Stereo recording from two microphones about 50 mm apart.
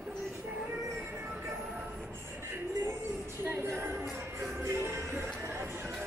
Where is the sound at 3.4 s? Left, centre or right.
Right.